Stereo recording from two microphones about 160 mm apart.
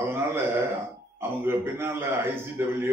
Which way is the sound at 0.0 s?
15° right (ahead or behind).